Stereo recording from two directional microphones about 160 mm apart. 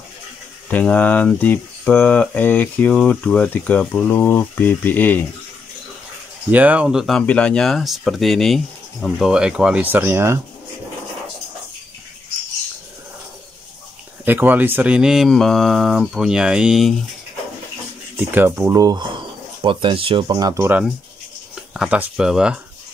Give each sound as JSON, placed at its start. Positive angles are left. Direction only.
{"t": 0.7, "sound": "speech", "side_deg": 10}
{"t": 6.5, "sound": "speech", "side_deg": -10}
{"t": 14.2, "sound": "speech", "side_deg": -10}
{"t": 18.1, "sound": "speech", "side_deg": -10}
{"t": 18.8, "sound": "speech", "side_deg": -25}
{"t": 21.7, "sound": "speech", "side_deg": -5}